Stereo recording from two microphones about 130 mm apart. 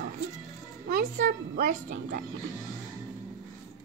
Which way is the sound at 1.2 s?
90° right.